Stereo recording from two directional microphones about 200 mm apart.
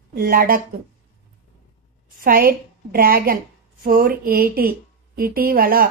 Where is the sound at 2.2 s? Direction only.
45° right (ahead or behind).